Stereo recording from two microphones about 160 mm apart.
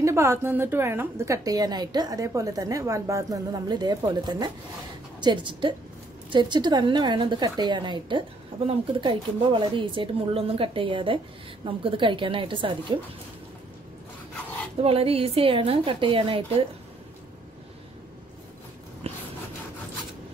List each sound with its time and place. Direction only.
0.0 s a woman's voice: 15° right (ahead or behind)
14.8 s a woman's voice: 35° right (ahead or behind)
19.1 s a sound: 40° right (ahead or behind)